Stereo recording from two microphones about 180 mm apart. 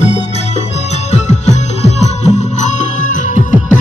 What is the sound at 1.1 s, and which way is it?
Music, 40° left (ahead or behind).